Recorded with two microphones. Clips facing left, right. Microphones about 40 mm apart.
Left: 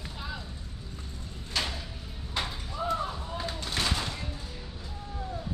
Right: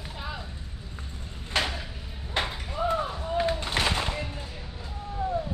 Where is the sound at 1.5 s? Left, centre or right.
Right.